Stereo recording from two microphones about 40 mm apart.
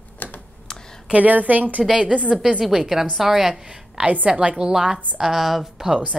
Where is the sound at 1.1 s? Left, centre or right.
Right.